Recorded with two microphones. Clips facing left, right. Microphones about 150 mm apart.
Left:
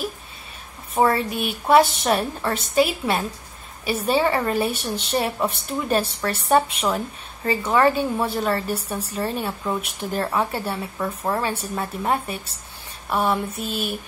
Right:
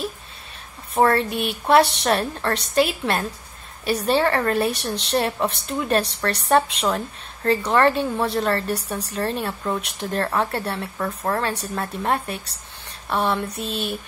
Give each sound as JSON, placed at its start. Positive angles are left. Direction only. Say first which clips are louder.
{"t": 0.9, "sound": "a woman's voice", "louder": "right 1 dB", "side_deg": 0}